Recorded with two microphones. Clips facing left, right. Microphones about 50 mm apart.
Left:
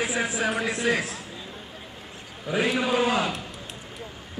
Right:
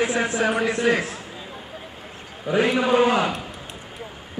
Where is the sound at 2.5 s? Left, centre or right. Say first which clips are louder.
Right 5 dB; centre.